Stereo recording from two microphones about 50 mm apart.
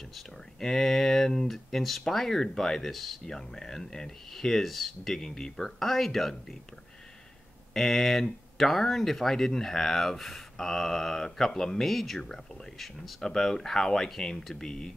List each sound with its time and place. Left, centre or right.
0.1 s speech: centre
7.7 s speech: centre